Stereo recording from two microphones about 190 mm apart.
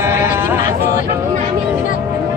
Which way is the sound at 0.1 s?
45° left (ahead or behind).